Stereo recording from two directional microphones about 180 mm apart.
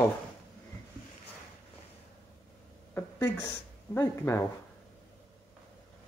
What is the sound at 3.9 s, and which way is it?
Speech, 15° left (ahead or behind).